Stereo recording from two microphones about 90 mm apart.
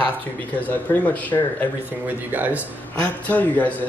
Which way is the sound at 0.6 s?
15° left (ahead or behind).